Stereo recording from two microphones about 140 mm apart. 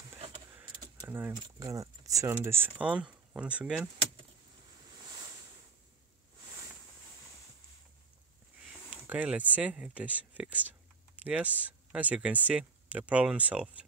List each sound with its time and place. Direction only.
1.0 s speech: 15° right (ahead or behind)
1.3 s speech: 25° right (ahead or behind); by 3.9 s 5° right (ahead or behind)
8.9 s speech: 10° right (ahead or behind)